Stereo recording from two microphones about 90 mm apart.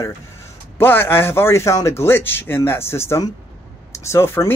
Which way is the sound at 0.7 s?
25° left (ahead or behind).